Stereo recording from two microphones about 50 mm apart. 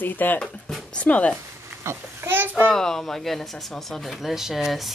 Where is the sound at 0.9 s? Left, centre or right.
Left.